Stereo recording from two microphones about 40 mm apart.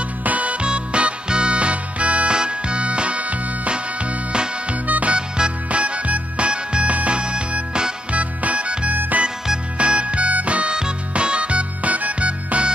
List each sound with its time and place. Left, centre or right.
0.2 s music: right
4.8 s music: right
5.1 s music: right